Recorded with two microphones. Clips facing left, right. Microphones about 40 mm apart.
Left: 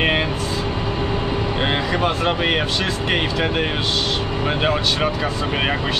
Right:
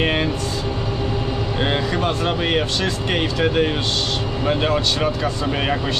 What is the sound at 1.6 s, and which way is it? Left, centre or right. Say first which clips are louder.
Speech: even; centre.